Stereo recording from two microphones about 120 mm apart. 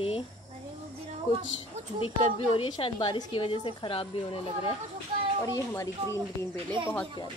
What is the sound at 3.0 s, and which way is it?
Speech, 35° left (ahead or behind).